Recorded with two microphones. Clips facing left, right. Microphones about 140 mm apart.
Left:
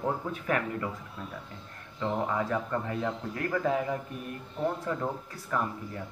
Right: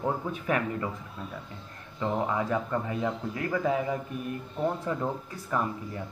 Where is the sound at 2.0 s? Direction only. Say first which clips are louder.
Right 1 dB; 15° right (ahead or behind).